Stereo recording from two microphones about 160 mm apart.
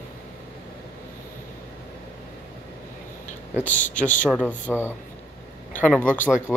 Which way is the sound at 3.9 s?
50° left (ahead or behind).